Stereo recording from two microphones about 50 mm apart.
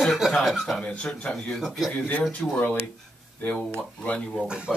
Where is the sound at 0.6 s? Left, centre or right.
Centre.